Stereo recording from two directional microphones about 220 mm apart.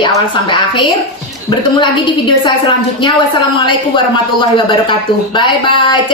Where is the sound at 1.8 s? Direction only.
20° left (ahead or behind).